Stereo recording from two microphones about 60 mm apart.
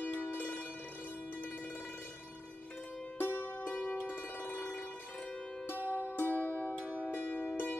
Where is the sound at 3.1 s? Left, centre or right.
Left.